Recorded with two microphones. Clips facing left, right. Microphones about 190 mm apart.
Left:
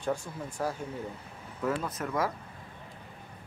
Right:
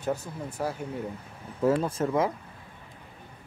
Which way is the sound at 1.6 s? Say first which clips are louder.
Right 7 dB; 30° right (ahead or behind).